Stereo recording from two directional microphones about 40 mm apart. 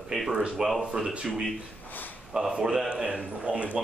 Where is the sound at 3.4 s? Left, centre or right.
Right.